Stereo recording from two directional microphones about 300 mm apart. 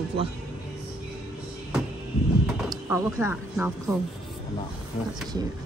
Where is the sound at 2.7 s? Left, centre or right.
Centre.